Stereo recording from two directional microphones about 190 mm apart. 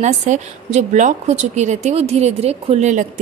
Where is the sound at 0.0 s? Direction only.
35° right (ahead or behind).